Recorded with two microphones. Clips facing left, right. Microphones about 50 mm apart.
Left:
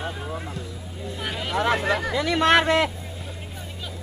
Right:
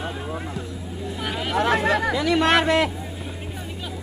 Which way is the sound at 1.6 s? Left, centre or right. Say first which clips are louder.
Right 2 dB; right.